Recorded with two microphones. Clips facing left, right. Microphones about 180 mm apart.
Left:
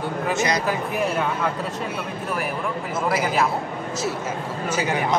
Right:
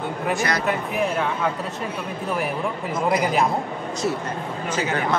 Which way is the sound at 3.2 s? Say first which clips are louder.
Even; 5° left (ahead or behind).